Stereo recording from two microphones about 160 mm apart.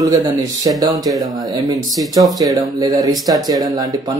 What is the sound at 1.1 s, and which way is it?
Speech, centre (ahead or behind).